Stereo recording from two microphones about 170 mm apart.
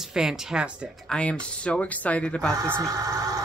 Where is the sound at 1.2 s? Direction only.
5° left (ahead or behind).